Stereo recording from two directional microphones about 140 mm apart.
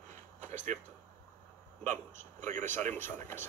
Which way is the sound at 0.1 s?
60° right (ahead or behind).